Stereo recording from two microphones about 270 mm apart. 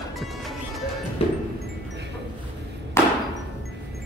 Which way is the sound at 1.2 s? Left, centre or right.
Left.